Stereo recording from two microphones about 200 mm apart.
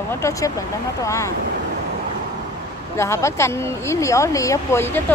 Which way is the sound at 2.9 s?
15° left (ahead or behind).